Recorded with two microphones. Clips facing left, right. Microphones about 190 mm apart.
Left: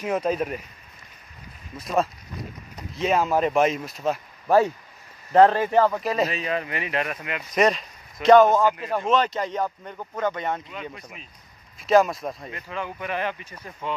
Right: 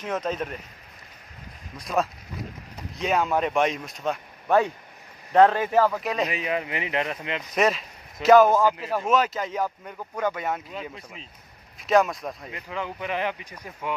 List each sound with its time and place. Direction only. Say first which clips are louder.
0.0 s speech: left 4 dB; 10° left (ahead or behind)
1.8 s speech: left 2 dB; centre (ahead or behind)
6.2 s speech: left 1 dB; 15° right (ahead or behind)
7.5 s speech: left 2 dB; centre (ahead or behind)
11.8 s speech: left 2 dB; centre (ahead or behind)
12.4 s speech: even; 15° right (ahead or behind)